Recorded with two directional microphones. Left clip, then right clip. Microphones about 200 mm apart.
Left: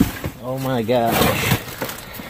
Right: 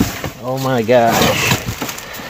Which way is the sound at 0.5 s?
15° right (ahead or behind).